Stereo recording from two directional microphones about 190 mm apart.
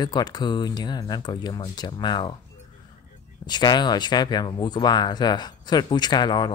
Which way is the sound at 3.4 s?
20° left (ahead or behind).